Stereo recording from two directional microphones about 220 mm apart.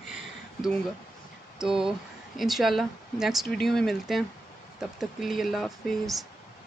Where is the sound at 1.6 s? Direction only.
5° right (ahead or behind).